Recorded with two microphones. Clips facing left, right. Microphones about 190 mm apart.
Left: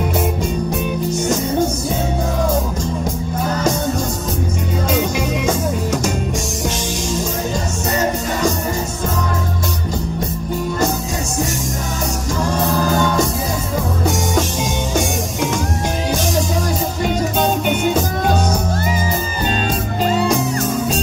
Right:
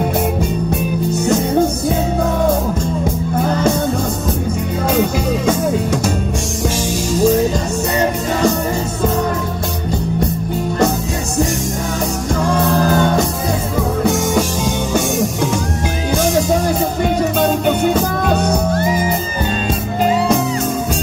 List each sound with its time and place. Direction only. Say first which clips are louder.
12.8 s music: right 3 dB; 55° right (ahead or behind)
18.3 s music: right 3 dB; 60° right (ahead or behind)